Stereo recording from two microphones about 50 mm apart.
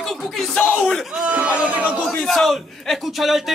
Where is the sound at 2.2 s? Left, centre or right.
Centre.